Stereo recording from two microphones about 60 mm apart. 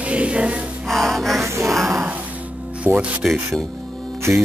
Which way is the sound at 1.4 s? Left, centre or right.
Right.